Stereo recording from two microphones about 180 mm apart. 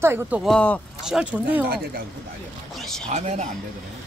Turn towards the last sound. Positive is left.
turn(degrees=-40)  # may be behind; listen again after turning